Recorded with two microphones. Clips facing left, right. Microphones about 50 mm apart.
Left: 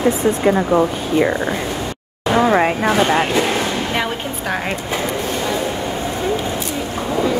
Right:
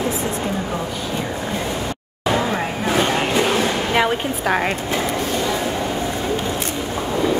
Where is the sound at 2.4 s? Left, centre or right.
Left.